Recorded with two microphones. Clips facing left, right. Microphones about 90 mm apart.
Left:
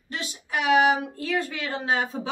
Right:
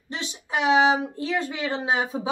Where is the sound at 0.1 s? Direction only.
20° right (ahead or behind).